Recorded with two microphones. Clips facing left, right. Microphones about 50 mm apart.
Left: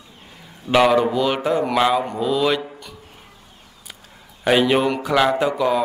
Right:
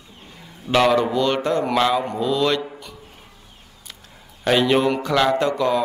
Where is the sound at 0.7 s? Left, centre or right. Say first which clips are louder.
Left 2 dB; centre.